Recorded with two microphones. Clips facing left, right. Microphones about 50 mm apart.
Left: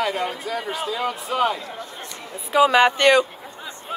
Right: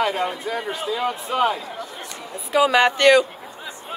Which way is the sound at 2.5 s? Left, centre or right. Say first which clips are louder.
Left 1 dB; centre.